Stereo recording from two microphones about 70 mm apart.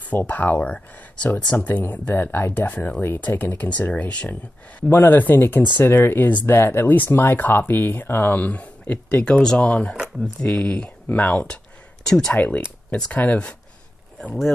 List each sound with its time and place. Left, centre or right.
0.1 s speech: left
12.4 s speech: left